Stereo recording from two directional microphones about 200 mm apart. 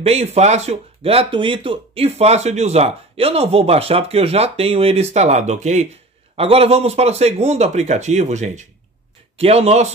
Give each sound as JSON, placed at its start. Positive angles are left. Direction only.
{"t": 0.0, "sound": "speech", "side_deg": -30}